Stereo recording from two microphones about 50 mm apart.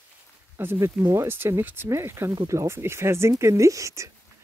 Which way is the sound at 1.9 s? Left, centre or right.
Right.